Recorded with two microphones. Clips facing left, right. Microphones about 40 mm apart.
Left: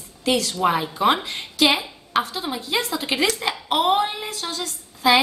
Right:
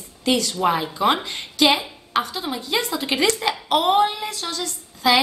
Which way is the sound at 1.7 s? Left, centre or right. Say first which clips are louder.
Right 1 dB; centre.